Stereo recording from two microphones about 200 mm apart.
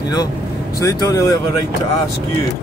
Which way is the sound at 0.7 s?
15° left (ahead or behind).